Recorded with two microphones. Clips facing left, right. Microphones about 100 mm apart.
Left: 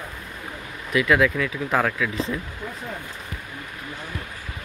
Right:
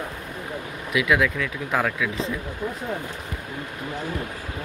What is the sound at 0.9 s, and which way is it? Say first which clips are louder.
Speech: left 2 dB; centre (ahead or behind).